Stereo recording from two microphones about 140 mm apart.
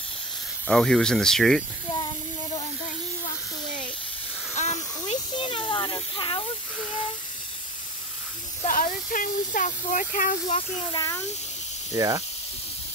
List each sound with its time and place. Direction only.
0.7 s speech: 5° left (ahead or behind)
4.6 s hiss: 55° left (ahead or behind)
5.4 s snake: 35° left (ahead or behind)
8.6 s speech: 70° left (ahead or behind)
10.9 s speech: 30° left (ahead or behind)
11.9 s speech: 25° right (ahead or behind)